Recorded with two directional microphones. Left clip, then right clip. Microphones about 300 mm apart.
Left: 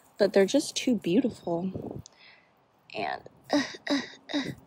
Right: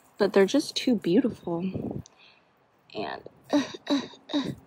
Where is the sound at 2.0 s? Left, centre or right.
Centre.